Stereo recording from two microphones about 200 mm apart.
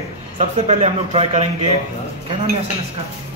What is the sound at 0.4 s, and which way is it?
Speech, 30° right (ahead or behind).